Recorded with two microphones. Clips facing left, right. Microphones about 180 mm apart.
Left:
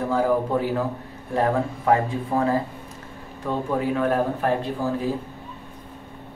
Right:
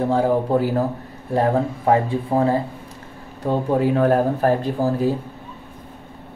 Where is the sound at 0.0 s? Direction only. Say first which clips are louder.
Right 3 dB; 30° right (ahead or behind).